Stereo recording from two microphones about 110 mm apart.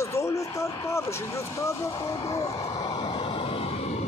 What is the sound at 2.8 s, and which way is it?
Vehicle, 45° left (ahead or behind).